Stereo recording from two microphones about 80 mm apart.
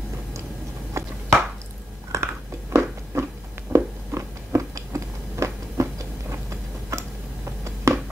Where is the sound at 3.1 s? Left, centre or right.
Right.